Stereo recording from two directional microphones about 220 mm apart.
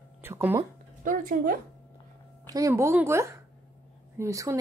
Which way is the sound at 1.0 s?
40° right (ahead or behind).